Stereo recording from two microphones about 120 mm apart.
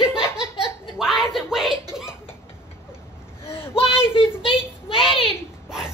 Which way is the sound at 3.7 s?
50° left (ahead or behind).